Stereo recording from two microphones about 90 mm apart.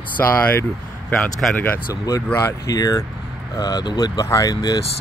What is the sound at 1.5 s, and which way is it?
Speech, 20° left (ahead or behind).